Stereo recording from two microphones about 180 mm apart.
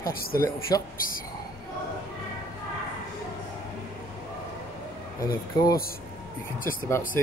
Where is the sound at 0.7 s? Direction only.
20° left (ahead or behind).